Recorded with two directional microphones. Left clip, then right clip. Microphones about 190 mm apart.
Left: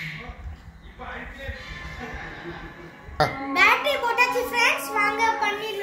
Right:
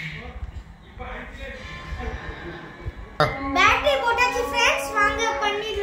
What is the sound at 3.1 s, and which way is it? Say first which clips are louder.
Children playing: right 1 dB; 5° right (ahead or behind).